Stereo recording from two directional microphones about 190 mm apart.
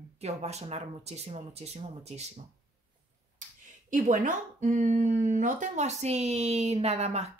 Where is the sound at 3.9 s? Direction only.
45° right (ahead or behind).